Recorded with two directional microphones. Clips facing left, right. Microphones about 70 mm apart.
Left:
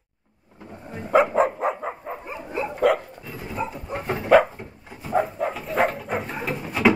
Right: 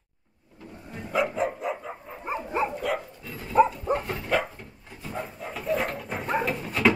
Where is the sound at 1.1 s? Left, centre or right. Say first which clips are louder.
Left 8 dB; left.